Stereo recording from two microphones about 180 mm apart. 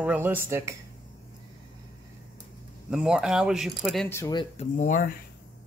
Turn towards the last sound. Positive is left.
turn(degrees=45)  # may be behind; listen again after turning